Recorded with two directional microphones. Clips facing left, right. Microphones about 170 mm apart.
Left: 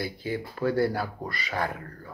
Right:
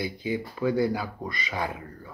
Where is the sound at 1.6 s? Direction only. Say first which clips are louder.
Left 2 dB; 15° right (ahead or behind).